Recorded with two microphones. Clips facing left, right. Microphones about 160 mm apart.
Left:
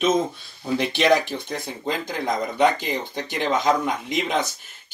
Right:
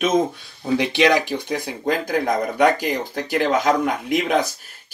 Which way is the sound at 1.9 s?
55° right (ahead or behind).